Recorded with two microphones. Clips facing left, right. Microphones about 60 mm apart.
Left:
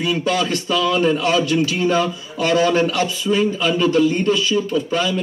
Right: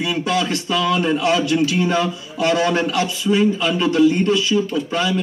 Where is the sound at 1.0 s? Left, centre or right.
Right.